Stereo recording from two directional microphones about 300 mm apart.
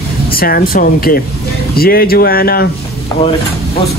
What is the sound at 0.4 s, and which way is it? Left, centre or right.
Speech, left.